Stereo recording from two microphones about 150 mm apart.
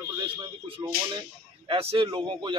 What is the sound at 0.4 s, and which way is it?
Speech, 35° right (ahead or behind).